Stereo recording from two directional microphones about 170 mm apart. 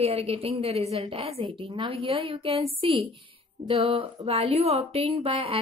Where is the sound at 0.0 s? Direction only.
35° right (ahead or behind).